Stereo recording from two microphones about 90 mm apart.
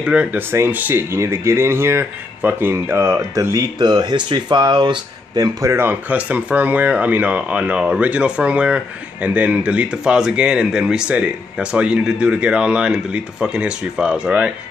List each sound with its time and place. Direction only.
0.0 s speech: 15° right (ahead or behind); by 3.6 s 35° right (ahead or behind)
3.7 s speech: 50° right (ahead or behind)
5.7 s speech: 25° right (ahead or behind)